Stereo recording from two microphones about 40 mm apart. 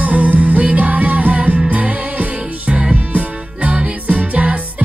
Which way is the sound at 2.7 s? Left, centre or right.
Right.